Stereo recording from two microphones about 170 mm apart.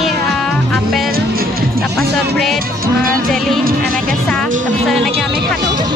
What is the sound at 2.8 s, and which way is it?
Music, 55° right (ahead or behind).